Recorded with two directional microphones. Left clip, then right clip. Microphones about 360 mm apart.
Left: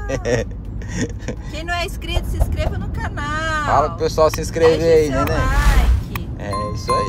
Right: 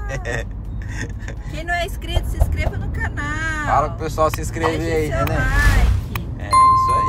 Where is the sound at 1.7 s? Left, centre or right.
Centre.